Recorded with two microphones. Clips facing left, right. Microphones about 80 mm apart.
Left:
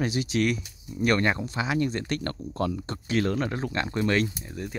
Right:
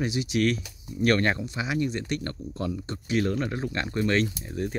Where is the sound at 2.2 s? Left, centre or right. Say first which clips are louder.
Left 3 dB; left.